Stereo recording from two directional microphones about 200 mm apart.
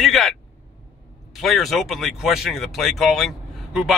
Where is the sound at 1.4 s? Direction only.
Centre (ahead or behind).